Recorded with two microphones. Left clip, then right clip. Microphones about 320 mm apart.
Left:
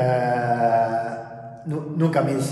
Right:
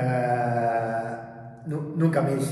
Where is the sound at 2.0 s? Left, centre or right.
Left.